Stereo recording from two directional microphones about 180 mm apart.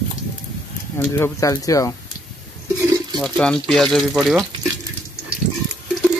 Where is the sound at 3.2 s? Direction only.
5° left (ahead or behind).